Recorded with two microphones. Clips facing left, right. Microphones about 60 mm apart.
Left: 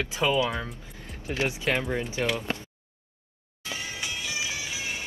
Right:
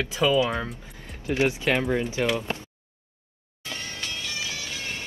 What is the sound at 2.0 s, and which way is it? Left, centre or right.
Speech, right.